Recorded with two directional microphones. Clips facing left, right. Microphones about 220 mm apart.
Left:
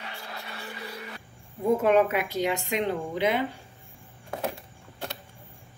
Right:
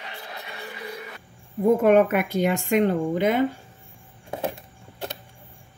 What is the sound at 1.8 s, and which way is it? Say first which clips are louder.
Speech: right 3 dB; 55° right (ahead or behind).